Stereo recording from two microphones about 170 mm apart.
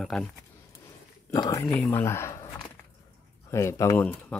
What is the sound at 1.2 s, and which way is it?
Speech, 20° left (ahead or behind).